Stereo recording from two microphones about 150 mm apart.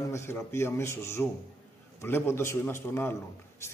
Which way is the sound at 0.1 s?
15° left (ahead or behind).